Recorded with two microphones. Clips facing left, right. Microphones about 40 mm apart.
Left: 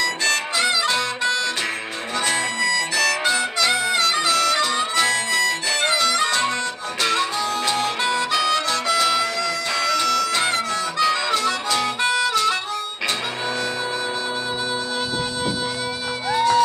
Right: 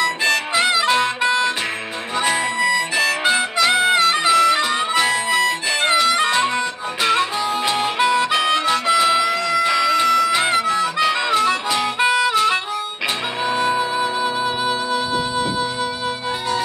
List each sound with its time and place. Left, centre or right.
0.0 s harmonica: right
13.5 s music: centre